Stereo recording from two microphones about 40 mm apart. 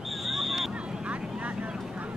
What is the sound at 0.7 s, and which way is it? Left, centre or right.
Vehicle, right.